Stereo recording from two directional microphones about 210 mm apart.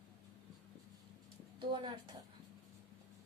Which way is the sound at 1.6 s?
20° right (ahead or behind).